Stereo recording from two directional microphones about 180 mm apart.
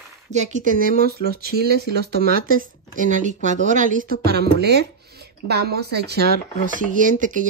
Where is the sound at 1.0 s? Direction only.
60° right (ahead or behind).